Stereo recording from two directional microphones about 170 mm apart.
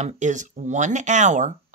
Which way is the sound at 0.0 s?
45° right (ahead or behind).